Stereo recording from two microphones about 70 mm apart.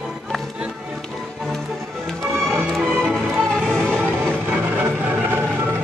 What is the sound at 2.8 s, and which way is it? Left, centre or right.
Music, centre.